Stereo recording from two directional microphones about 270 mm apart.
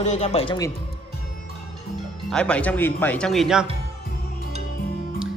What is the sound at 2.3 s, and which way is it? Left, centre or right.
Speech, centre.